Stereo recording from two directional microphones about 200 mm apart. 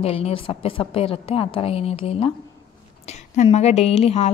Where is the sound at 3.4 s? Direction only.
35° left (ahead or behind).